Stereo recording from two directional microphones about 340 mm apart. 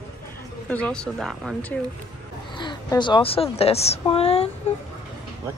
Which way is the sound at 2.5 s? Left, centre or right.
Centre.